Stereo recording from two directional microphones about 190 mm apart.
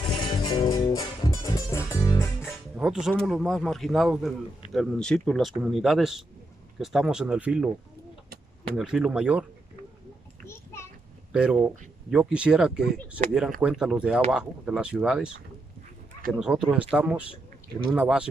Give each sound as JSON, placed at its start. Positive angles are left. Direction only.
{"t": 0.0, "sound": "music", "side_deg": 25}
{"t": 2.7, "sound": "speech", "side_deg": -5}
{"t": 8.7, "sound": "speech", "side_deg": 0}
{"t": 10.4, "sound": "a sound", "side_deg": 15}
{"t": 11.3, "sound": "speech", "side_deg": -5}